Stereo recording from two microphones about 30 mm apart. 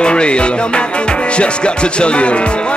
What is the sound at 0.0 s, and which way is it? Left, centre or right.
Music, left.